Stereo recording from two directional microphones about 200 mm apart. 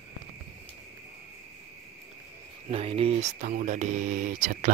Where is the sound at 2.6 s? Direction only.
30° right (ahead or behind).